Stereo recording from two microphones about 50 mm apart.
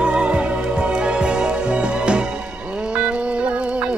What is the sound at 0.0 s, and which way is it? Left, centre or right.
Music, centre.